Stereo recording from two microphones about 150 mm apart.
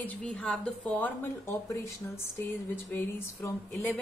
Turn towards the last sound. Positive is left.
turn(degrees=15)  # may be behind; listen again after turning